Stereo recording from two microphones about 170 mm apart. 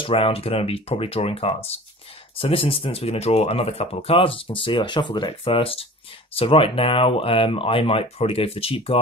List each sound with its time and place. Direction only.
0.0 s speech: 35° left (ahead or behind)